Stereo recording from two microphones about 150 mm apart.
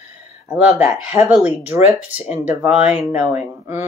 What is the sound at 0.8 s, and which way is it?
Speech, centre (ahead or behind).